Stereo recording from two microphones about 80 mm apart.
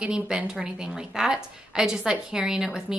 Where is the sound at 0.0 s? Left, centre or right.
Centre.